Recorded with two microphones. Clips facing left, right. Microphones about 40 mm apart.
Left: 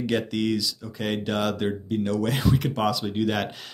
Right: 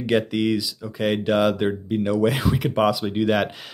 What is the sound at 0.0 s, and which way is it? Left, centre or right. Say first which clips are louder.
Speech: right 4 dB; centre.